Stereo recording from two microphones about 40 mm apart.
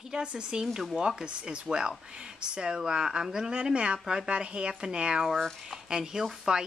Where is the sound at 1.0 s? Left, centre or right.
Right.